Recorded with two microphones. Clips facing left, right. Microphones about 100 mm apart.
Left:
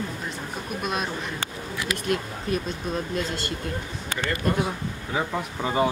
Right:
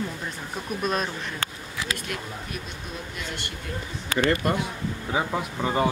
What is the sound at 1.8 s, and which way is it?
Speech, 25° right (ahead or behind).